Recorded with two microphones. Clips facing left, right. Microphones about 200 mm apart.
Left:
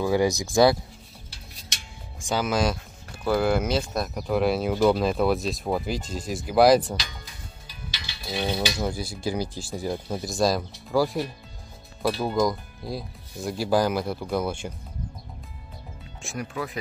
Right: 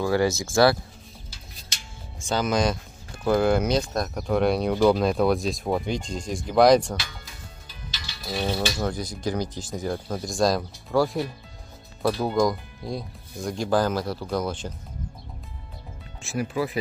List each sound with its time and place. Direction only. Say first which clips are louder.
0.1 s speech: left 1 dB; 15° left (ahead or behind)
2.2 s speech: right 1 dB; 5° left (ahead or behind)
8.2 s a sound: right 1 dB; centre (ahead or behind)
8.8 s speech: right 1 dB; 10° left (ahead or behind)
16.2 s speech: right 5 dB; 5° right (ahead or behind)